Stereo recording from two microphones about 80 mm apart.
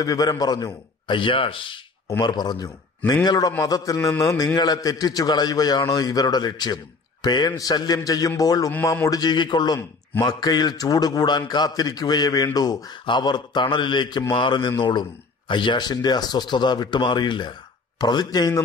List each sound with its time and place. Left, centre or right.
0.0 s a man's voice: left
0.7 s speech: left
2.2 s a man's voice: left
4.6 s a man's voice: left
13.0 s speech: left
17.9 s a man's voice: left